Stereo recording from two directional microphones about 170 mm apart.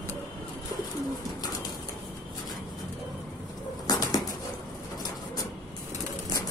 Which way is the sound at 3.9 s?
25° left (ahead or behind).